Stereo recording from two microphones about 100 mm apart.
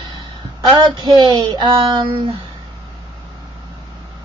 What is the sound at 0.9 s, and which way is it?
Speech, 50° right (ahead or behind).